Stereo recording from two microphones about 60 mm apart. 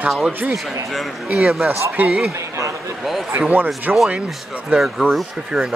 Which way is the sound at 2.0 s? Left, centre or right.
Right.